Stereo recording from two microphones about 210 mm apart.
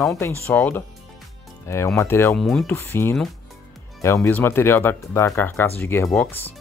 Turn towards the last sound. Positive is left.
turn(degrees=10)  # may be behind; listen again after turning